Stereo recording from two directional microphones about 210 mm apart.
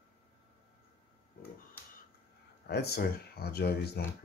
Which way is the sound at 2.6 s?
50° left (ahead or behind).